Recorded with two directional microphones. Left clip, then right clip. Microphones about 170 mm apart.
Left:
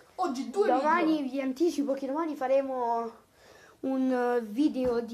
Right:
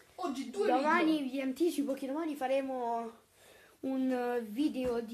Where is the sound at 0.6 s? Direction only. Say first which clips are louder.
Left 2 dB; 55° right (ahead or behind).